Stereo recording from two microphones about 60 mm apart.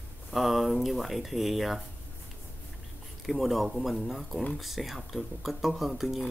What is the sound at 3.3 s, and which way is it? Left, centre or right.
Speech, centre.